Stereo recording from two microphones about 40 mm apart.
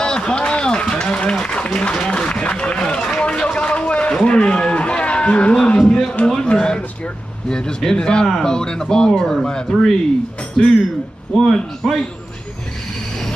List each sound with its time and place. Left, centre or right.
0.0 s run: left
1.4 s speech: left
2.0 s run: left
4.1 s music: left
6.2 s a man's voice: left
11.3 s a man's voice: centre